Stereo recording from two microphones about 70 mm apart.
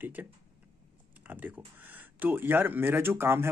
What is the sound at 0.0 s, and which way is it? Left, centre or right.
Speech, right.